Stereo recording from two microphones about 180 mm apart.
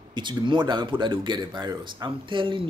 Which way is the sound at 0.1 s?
25° right (ahead or behind).